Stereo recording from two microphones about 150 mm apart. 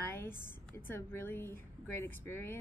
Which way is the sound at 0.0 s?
15° left (ahead or behind).